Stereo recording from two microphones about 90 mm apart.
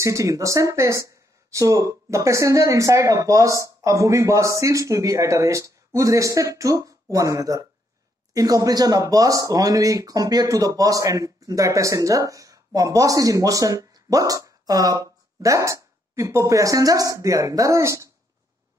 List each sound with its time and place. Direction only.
0.0 s speech: 35° right (ahead or behind)